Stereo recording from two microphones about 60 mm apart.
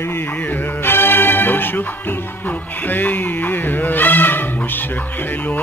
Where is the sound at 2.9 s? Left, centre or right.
Left.